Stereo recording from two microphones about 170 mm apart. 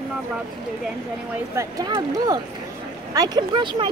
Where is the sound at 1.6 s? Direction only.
20° right (ahead or behind).